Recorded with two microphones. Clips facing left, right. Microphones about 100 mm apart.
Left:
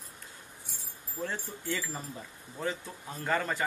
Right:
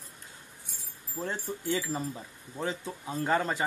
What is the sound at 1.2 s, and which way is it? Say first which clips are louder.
Speech: right 2 dB; 20° right (ahead or behind).